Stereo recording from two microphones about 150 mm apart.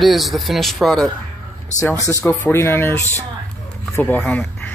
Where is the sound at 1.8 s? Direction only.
20° left (ahead or behind).